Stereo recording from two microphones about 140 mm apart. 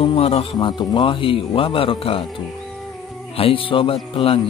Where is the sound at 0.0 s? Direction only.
40° left (ahead or behind).